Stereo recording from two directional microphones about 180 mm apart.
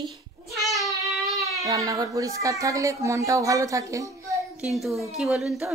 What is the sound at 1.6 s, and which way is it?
Speech, 20° right (ahead or behind).